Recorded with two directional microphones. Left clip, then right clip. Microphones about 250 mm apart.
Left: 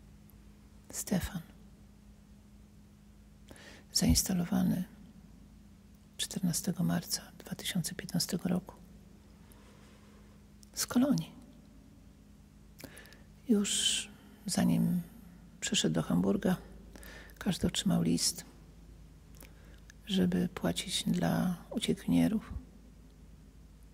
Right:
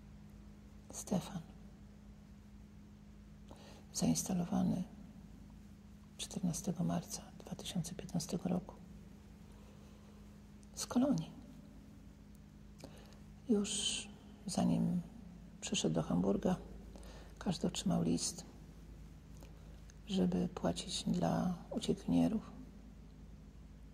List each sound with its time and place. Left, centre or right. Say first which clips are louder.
0.8 s speech: left 4 dB; left
3.4 s speech: left 5 dB; left
6.1 s speech: left 7 dB; left
10.7 s speech: left 5 dB; left
13.5 s speech: left 6 dB; left
20.1 s speech: left 4 dB; left